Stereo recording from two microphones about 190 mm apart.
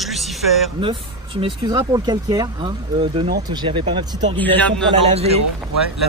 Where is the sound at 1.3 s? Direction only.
25° right (ahead or behind).